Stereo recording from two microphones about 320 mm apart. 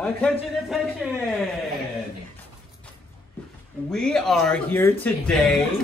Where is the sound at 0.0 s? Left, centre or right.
Centre.